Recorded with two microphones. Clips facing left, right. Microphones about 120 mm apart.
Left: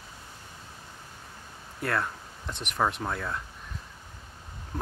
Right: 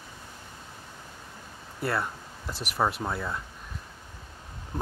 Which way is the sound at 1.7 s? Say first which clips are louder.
Even; 5° right (ahead or behind).